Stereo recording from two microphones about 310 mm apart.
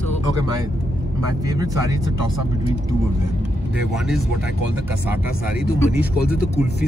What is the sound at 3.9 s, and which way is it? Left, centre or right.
Speech, centre.